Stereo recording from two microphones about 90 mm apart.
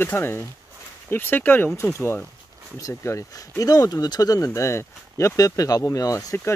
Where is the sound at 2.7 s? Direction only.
35° left (ahead or behind).